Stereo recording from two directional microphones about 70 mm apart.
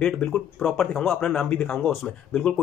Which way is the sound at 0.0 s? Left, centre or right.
Centre.